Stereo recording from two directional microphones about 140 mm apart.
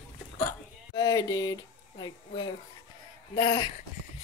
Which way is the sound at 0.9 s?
30° left (ahead or behind).